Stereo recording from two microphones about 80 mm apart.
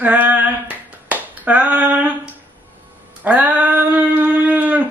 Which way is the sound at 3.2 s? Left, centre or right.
Centre.